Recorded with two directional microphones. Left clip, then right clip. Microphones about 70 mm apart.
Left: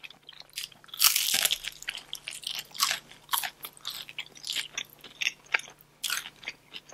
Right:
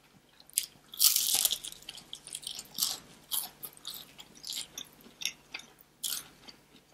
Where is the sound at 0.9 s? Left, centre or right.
Left.